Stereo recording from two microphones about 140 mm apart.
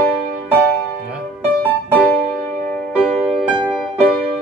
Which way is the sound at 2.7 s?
15° left (ahead or behind).